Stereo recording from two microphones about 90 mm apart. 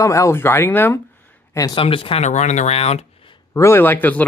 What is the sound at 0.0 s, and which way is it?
Speech, 35° left (ahead or behind).